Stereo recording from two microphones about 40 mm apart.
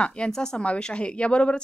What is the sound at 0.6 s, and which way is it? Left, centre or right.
A woman's voice, left.